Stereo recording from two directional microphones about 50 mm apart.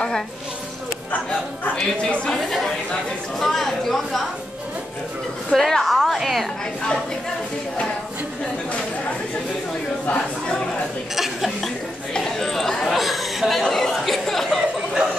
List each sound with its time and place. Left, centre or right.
1.8 s a woman's voice: centre
2.4 s a woman's voice: centre
5.5 s a woman's voice: centre
10.0 s a sound: centre
11.1 s chuckle: centre
11.6 s chatter: centre
12.9 s chatter: centre